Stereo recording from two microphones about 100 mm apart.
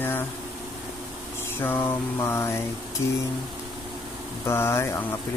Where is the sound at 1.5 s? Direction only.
20° left (ahead or behind).